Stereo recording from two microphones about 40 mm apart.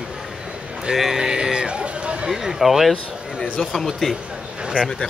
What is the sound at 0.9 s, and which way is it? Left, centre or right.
Speech, centre.